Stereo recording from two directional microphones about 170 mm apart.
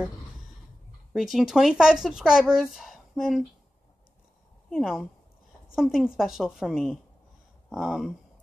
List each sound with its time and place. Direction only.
1.1 s speech: centre (ahead or behind)
4.6 s speech: centre (ahead or behind)